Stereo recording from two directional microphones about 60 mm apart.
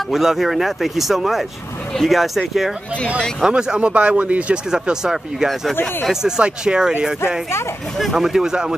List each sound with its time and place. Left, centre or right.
0.1 s speech: centre
3.4 s speech: centre
4.6 s speech: centre
8.0 s speech: centre